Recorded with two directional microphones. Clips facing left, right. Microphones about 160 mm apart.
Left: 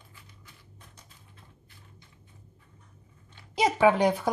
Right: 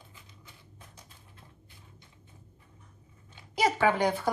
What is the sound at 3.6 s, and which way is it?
Speech, 20° left (ahead or behind).